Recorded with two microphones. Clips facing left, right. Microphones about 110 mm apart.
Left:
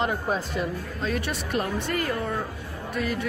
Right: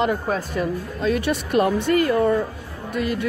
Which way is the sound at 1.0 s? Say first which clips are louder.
Right 7 dB; 80° right.